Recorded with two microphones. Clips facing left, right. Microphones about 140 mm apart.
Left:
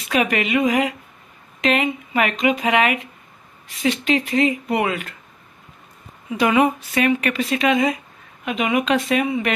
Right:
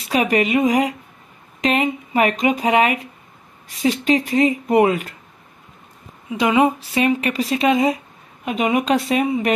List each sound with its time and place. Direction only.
0.1 s speech: 35° right (ahead or behind)
6.3 s speech: 25° right (ahead or behind)